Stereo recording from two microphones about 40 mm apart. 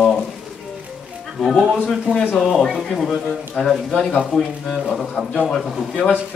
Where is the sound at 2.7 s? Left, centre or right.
Centre.